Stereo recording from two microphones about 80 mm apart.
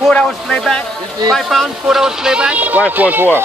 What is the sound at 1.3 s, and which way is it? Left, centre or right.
Speech, centre.